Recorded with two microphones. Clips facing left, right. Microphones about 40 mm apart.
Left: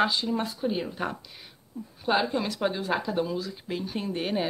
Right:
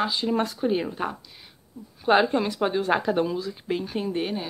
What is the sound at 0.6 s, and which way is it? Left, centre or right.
Speech, right.